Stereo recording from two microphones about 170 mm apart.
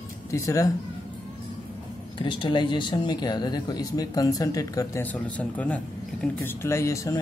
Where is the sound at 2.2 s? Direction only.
30° left (ahead or behind).